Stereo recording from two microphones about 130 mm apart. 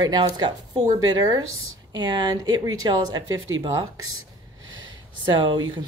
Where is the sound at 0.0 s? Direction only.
35° right (ahead or behind).